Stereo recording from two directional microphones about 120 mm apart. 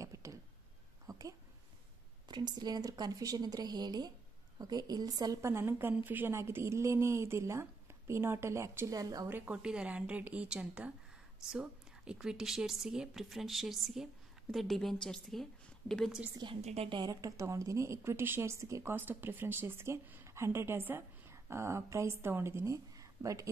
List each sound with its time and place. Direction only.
0.0 s a sound: 25° right (ahead or behind)
2.2 s speech: 35° right (ahead or behind)
9.3 s speech: 15° right (ahead or behind); by 16.2 s 5° left (ahead or behind)
16.6 s a woman's voice: 60° right (ahead or behind)
16.9 s speech: 35° right (ahead or behind)